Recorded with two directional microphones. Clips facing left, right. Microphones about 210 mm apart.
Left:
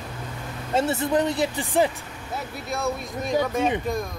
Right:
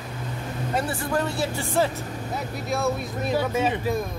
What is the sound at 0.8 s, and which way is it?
Speech, 25° left (ahead or behind).